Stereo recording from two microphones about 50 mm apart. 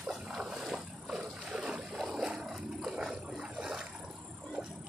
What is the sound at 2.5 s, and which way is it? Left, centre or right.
Roar, centre.